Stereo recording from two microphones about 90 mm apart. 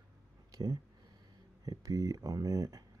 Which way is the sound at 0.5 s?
45° right (ahead or behind).